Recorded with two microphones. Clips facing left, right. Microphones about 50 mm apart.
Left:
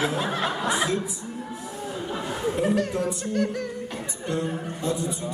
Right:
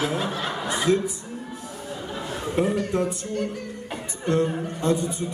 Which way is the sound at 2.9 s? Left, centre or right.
Right.